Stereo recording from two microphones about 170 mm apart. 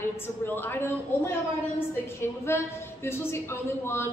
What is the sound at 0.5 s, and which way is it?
Speech, 10° left (ahead or behind).